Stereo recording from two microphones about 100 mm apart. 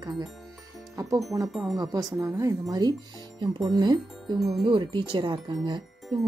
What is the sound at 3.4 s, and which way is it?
Speech, 50° right (ahead or behind).